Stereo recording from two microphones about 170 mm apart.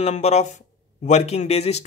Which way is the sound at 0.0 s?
40° left (ahead or behind).